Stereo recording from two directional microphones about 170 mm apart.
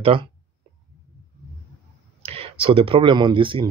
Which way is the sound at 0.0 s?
30° right (ahead or behind).